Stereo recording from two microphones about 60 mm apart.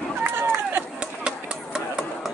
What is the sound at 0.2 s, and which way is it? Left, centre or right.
Run, right.